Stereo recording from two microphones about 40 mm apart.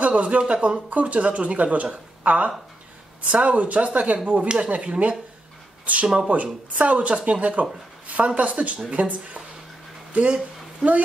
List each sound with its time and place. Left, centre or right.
0.0 s speech: right
0.8 s speech: right
6.1 s speech: right
10.2 s a sound: right